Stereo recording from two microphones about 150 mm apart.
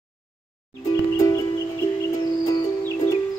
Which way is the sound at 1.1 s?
25° left (ahead or behind).